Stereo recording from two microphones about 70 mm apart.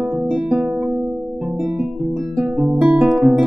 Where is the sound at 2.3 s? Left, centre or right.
Centre.